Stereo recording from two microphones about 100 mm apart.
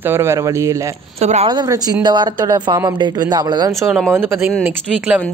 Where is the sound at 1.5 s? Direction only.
40° right (ahead or behind).